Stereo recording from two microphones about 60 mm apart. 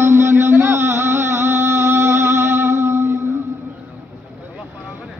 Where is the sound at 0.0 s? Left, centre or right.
Right.